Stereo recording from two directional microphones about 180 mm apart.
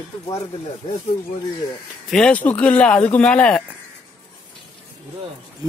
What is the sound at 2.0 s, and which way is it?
Speech, 5° left (ahead or behind).